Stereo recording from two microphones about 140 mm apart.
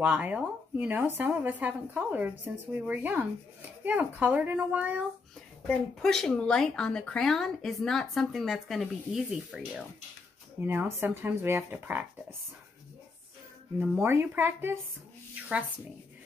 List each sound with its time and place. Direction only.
0.0 s speech: 10° right (ahead or behind)
5.7 s speech: 5° left (ahead or behind)
10.6 s speech: 15° right (ahead or behind)
13.7 s speech: 15° right (ahead or behind)